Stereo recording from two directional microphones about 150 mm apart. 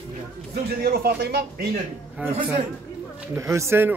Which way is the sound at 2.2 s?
10° right (ahead or behind).